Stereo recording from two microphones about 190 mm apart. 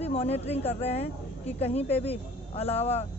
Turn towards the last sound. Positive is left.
turn(degrees=35)  # may be behind; listen again after turning